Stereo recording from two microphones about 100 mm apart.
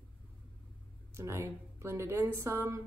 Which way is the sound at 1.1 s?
30° right (ahead or behind).